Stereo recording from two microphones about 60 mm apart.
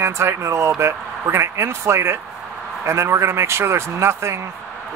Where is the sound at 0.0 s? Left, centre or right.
Right.